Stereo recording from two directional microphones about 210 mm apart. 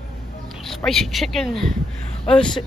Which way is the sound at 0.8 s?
Centre (ahead or behind).